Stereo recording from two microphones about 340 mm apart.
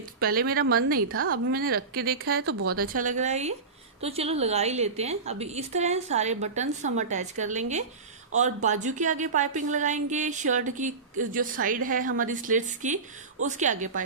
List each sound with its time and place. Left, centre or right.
0.2 s a woman's voice: right
1.0 s a woman's voice: right
1.3 s a woman's voice: right